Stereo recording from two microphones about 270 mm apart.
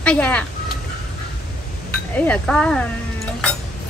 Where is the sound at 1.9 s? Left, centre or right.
Centre.